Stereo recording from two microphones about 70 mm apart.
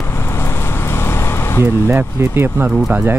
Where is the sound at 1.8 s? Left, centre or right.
Right.